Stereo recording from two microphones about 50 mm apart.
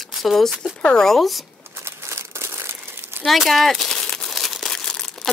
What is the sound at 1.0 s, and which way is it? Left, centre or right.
Speech, centre.